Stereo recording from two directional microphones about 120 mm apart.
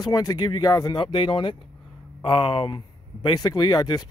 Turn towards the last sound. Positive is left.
turn(degrees=35)  # may be behind; listen again after turning